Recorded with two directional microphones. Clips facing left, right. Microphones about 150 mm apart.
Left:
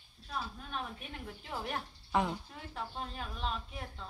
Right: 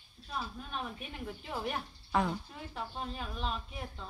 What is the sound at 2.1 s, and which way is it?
Speech, 20° left (ahead or behind).